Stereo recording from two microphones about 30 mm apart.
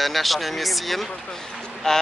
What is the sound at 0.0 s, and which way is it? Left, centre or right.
Speech, centre.